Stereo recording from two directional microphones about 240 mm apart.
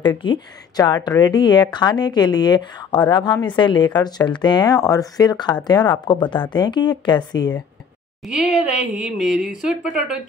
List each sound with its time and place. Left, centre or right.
0.2 s speech: centre
8.3 s speech: centre